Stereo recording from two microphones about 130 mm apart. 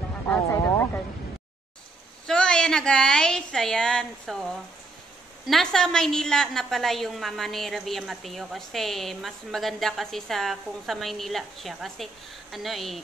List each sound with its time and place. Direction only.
0.3 s speech: 15° left (ahead or behind)
2.2 s a woman's voice: 5° left (ahead or behind)